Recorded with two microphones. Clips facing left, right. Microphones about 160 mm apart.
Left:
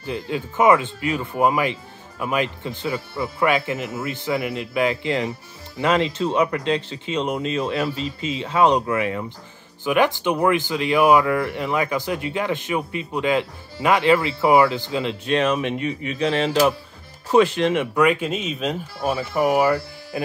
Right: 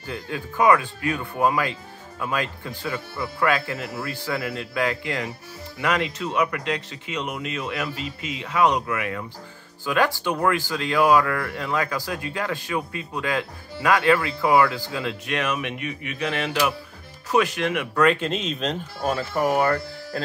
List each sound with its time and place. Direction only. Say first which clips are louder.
0.0 s speech: left 5 dB; 20° left (ahead or behind)
17.9 s speech: left 1 dB; 10° left (ahead or behind)